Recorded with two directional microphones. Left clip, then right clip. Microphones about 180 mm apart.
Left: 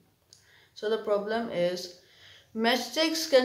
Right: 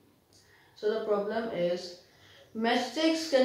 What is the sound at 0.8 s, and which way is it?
Speech, 30° left (ahead or behind).